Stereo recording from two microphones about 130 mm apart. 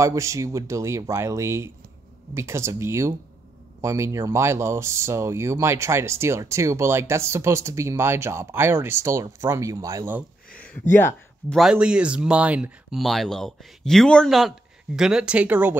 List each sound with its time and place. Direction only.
0.0 s speech: 25° right (ahead or behind)
10.6 s speech: 15° left (ahead or behind)
11.5 s speech: 5° right (ahead or behind)
13.0 s speech: centre (ahead or behind)